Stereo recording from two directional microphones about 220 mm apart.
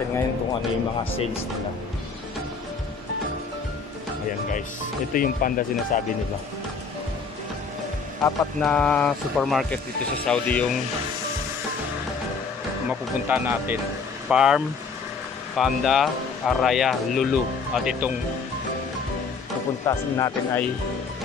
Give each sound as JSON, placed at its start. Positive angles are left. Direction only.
{"t": 5.1, "sound": "speech", "side_deg": 40}
{"t": 8.2, "sound": "speech", "side_deg": 5}
{"t": 13.3, "sound": "speech", "side_deg": -10}
{"t": 19.9, "sound": "speech", "side_deg": 15}